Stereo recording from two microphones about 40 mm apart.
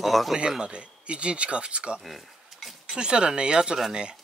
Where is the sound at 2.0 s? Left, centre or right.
Centre.